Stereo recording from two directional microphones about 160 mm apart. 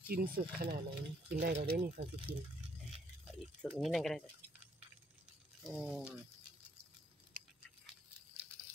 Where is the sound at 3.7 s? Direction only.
Centre (ahead or behind).